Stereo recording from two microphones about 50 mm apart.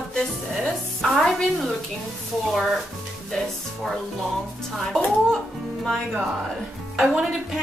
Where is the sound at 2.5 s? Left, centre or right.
Centre.